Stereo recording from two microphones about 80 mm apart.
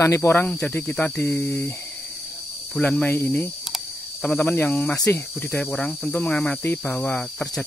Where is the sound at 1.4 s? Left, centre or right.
Centre.